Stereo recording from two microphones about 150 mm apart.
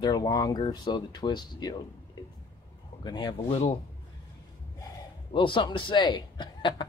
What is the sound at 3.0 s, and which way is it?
Speech, 30° left (ahead or behind).